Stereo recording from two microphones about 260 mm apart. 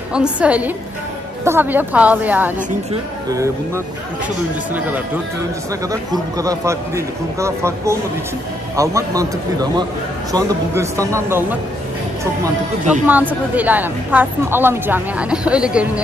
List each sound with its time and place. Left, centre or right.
0.1 s a woman's voice: centre
13.0 s a woman's voice: centre